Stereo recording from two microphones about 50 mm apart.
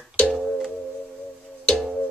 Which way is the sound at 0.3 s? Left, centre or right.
Centre.